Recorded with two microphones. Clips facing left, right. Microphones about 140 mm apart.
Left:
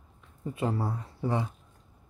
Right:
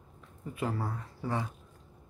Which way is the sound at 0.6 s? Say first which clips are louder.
Left 3 dB; 25° left (ahead or behind).